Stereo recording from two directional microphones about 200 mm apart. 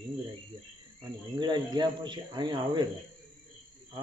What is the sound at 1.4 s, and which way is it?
Speech, 20° right (ahead or behind).